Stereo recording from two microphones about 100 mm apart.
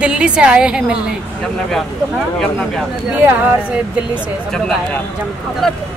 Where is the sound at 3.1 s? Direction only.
20° right (ahead or behind).